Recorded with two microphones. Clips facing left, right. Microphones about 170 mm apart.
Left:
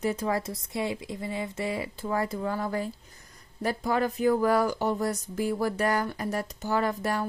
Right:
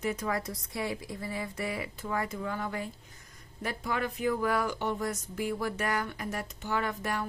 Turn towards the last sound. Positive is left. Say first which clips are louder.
# left 5 dB
turn(degrees=35)  # may be behind; listen again after turning